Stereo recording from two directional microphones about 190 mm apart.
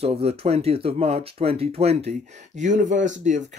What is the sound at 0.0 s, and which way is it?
Speech, 30° right (ahead or behind).